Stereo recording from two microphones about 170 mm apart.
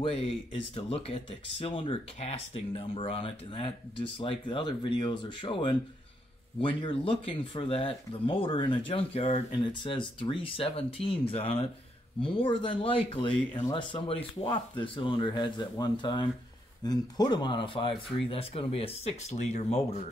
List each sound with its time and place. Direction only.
0.7 s speech: 35° left (ahead or behind)